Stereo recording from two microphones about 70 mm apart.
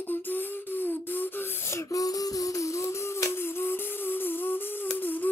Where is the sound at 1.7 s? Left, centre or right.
Left.